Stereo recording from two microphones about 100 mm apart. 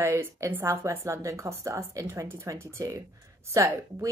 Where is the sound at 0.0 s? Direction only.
25° right (ahead or behind).